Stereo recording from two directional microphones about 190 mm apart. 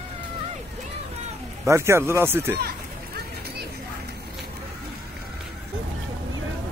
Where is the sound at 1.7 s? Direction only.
15° right (ahead or behind).